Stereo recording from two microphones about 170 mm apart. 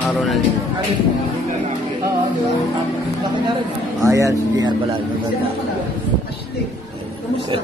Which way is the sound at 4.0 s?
20° right (ahead or behind).